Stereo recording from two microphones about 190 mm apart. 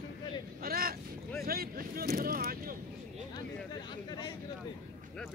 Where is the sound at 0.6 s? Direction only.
50° right (ahead or behind).